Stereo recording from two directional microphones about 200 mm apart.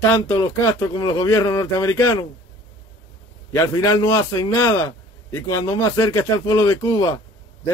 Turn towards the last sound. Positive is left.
turn(degrees=20)  # may be behind; listen again after turning